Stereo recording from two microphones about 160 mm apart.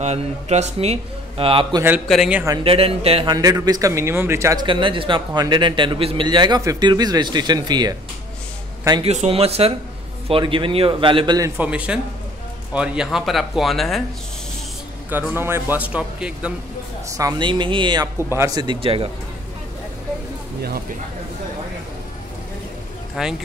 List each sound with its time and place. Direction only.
0.0 s speech: 45° right (ahead or behind)
2.0 s speech: 5° right (ahead or behind)
2.6 s speech: 35° right (ahead or behind)
3.3 s a man's voice: 20° right (ahead or behind)
4.6 s a man's voice: 30° right (ahead or behind)
9.0 s speech: 40° right (ahead or behind); by 11.5 s 25° right (ahead or behind)
11.5 s a man's voice: 10° right (ahead or behind)
15.0 s a man's voice: 10° right (ahead or behind)
17.2 s a man's voice: 25° right (ahead or behind)
23.2 s speech: 5° right (ahead or behind)